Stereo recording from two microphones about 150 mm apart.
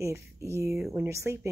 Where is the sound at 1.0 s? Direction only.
20° right (ahead or behind).